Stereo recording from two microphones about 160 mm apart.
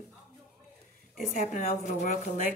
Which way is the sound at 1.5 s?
50° left (ahead or behind).